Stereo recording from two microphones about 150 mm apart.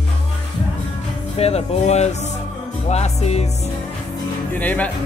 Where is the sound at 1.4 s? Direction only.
45° left (ahead or behind).